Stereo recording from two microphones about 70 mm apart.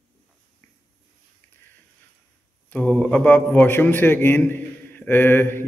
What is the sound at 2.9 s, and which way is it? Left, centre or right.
A man's voice, centre.